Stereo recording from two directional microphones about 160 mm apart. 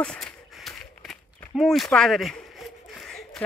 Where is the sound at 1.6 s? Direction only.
Centre (ahead or behind).